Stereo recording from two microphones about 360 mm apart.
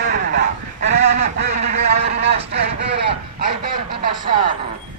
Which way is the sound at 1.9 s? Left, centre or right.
Centre.